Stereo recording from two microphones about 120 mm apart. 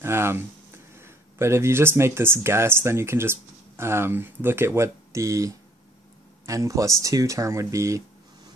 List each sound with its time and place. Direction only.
0.0 s speech: 20° right (ahead or behind)